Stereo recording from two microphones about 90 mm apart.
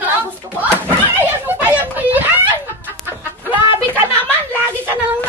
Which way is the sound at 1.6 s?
20° right (ahead or behind).